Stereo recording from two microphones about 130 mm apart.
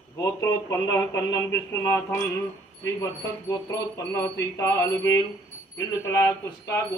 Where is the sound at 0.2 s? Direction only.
20° left (ahead or behind).